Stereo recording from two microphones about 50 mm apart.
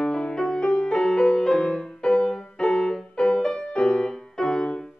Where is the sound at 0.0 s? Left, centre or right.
Centre.